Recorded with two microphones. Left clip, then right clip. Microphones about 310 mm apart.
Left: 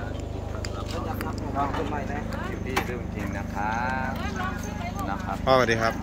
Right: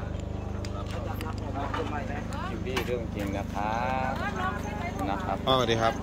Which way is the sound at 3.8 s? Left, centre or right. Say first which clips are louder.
Left 1 dB; right.